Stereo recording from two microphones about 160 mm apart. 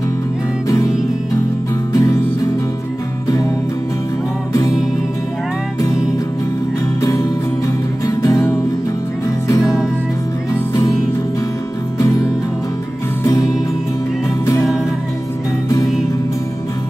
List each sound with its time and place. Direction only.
0.7 s music: 20° left (ahead or behind)
2.0 s music: 20° left (ahead or behind)
7.0 s music: 25° left (ahead or behind)
10.5 s music: 20° left (ahead or behind)
13.2 s music: 20° left (ahead or behind)